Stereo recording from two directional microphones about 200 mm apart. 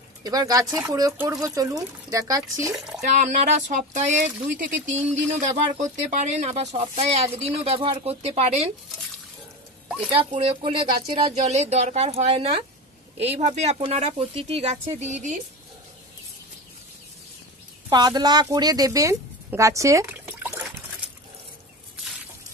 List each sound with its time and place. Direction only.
0.2 s speech: 20° right (ahead or behind)
2.7 s speech: 5° right (ahead or behind)
3.0 s speech: 35° right (ahead or behind)
9.8 s a sound: 5° right (ahead or behind)
10.3 s speech: 30° right (ahead or behind)
17.8 s a woman's voice: 20° right (ahead or behind)